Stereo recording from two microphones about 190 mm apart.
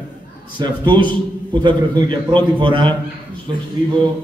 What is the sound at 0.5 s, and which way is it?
A man's voice, 25° right (ahead or behind).